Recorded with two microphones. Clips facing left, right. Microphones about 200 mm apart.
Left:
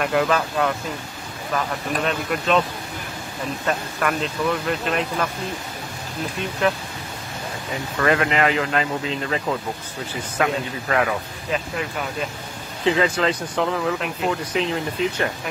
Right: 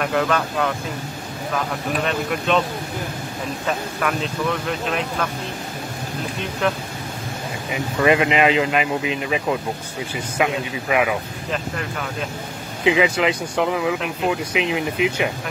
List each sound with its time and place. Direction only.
0.0 s speech: centre (ahead or behind)
2.0 s speech: centre (ahead or behind)
3.6 s speech: centre (ahead or behind)
6.6 s speech: centre (ahead or behind)
7.7 s speech: 15° right (ahead or behind)
11.5 s speech: centre (ahead or behind)
12.8 s speech: 15° right (ahead or behind)
14.3 s speech: 15° right (ahead or behind)